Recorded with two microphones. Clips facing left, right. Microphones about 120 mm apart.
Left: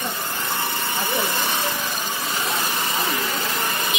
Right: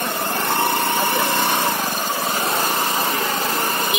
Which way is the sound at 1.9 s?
45° right (ahead or behind).